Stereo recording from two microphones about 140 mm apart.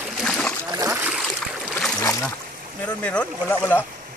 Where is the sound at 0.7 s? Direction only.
20° right (ahead or behind).